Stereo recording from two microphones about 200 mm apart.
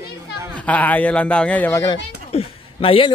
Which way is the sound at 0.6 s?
5° left (ahead or behind).